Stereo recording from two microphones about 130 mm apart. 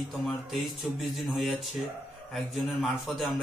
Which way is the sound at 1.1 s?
Centre (ahead or behind).